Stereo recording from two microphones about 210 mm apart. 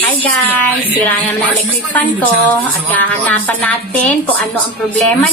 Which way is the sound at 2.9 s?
10° left (ahead or behind).